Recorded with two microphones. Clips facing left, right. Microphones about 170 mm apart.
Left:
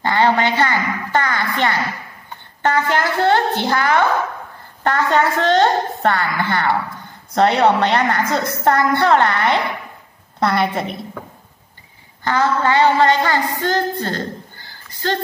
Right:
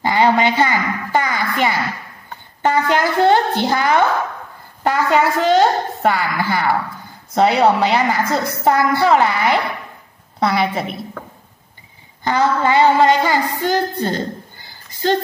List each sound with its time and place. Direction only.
0.0 s a woman's voice: 10° right (ahead or behind)
12.3 s a woman's voice: 15° right (ahead or behind)